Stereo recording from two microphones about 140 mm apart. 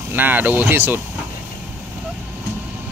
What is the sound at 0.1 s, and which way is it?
Speech, 15° right (ahead or behind).